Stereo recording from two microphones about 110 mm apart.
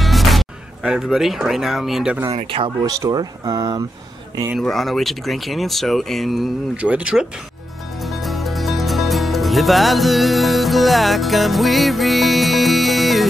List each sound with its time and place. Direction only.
0.0 s speech: centre (ahead or behind)
2.4 s speech: 50° right (ahead or behind)
2.8 s speech: 35° right (ahead or behind)
4.6 s speech: centre (ahead or behind)
8.0 s music: centre (ahead or behind)